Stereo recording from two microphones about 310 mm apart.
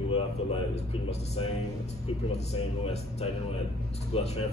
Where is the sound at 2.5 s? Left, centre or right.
Centre.